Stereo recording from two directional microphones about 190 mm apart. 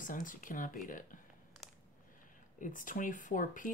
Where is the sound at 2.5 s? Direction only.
45° left (ahead or behind).